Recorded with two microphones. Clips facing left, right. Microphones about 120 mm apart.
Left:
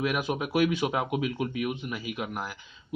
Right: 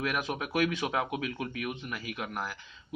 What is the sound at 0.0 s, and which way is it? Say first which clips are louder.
A man's voice: left 4 dB; 10° left (ahead or behind).